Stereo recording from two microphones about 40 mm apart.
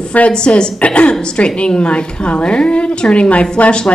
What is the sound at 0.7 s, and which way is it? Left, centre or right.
A woman's voice, left.